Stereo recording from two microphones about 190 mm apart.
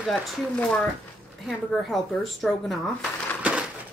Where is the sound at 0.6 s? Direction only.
10° left (ahead or behind).